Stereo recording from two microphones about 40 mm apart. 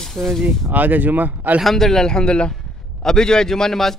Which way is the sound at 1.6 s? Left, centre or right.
Centre.